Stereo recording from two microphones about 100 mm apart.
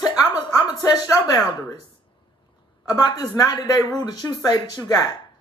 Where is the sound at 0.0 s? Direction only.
45° left (ahead or behind).